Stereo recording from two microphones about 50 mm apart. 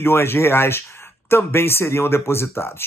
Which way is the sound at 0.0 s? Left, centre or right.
Left.